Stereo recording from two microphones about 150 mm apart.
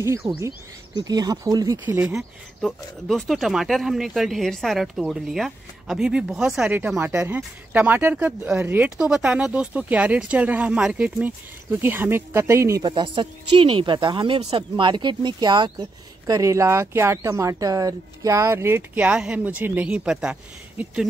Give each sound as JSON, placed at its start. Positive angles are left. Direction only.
{"t": 0.2, "sound": "speech", "side_deg": -5}
{"t": 1.0, "sound": "speech", "side_deg": -25}
{"t": 1.9, "sound": "speech", "side_deg": -15}
{"t": 2.1, "sound": "speech", "side_deg": 0}